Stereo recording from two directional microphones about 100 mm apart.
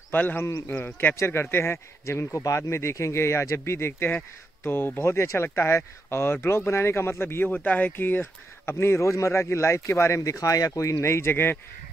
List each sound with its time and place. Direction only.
0.1 s speech: 20° left (ahead or behind)